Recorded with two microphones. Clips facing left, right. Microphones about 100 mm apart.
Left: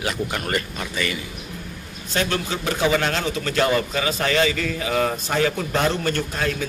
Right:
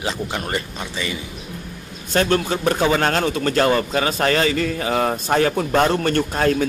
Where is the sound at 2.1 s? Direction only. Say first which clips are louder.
Right 5 dB; 40° right (ahead or behind).